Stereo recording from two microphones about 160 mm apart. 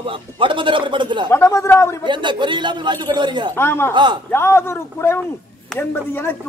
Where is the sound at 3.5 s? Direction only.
15° left (ahead or behind).